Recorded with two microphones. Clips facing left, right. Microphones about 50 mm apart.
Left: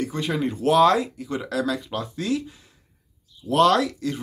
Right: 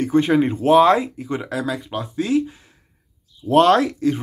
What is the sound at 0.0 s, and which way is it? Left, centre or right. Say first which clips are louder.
Speech: right 9 dB; right.